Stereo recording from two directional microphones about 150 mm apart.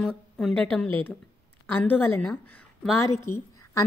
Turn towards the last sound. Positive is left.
turn(degrees=20)  # may be behind; listen again after turning